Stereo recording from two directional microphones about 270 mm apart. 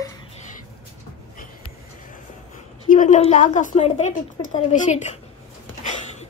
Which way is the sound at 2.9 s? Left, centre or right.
Left.